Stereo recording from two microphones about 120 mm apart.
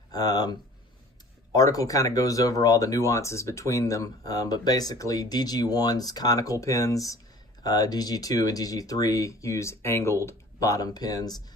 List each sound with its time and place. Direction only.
0.1 s speech: 30° left (ahead or behind)